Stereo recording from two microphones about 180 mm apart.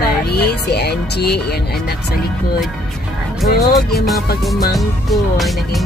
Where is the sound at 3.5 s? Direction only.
60° left (ahead or behind).